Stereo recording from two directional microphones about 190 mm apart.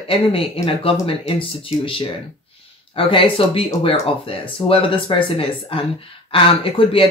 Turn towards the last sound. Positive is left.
turn(degrees=30)  # may be behind; listen again after turning